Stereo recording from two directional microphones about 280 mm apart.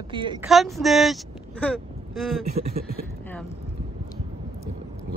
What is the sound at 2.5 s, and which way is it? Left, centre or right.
Speech, right.